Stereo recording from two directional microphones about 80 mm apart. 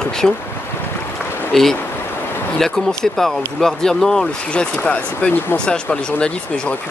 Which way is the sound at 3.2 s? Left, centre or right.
Centre.